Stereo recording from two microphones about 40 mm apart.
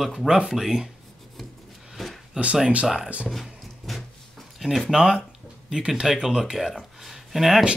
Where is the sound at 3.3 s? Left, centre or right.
Centre.